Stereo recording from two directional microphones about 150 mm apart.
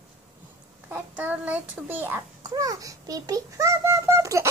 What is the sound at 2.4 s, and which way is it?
A child's voice, 25° right (ahead or behind).